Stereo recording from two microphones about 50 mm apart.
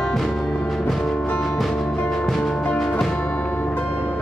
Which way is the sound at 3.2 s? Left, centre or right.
Left.